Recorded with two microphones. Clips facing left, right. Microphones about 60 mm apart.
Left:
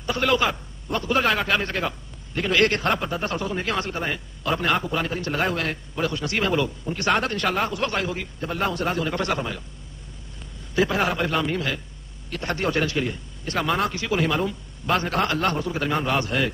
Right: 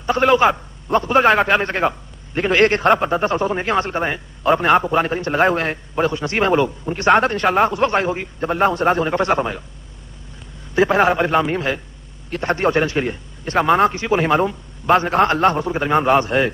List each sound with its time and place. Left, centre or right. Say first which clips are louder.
0.0 s a man's voice: right 8 dB; right
10.7 s a man's voice: right 7 dB; right